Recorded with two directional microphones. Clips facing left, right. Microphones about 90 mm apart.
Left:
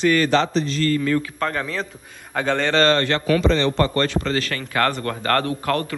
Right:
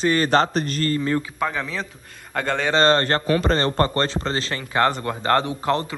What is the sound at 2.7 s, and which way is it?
A man's voice, 35° right (ahead or behind).